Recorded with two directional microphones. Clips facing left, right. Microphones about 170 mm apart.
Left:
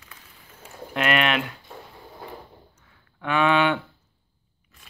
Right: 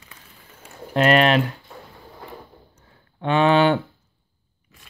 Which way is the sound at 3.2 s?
30° right (ahead or behind).